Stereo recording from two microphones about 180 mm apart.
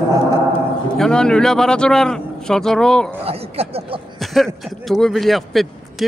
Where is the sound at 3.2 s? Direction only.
35° right (ahead or behind).